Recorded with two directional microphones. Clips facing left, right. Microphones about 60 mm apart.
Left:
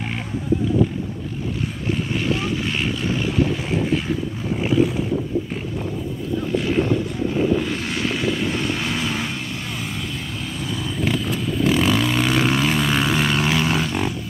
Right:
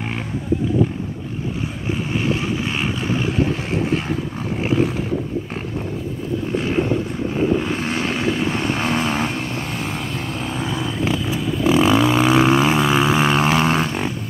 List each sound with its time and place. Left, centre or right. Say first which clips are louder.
2.1 s vehicle: right 4 dB; right
7.6 s vehicle: right 2 dB; right
11.1 s vehicle: even; centre; by 13.9 s right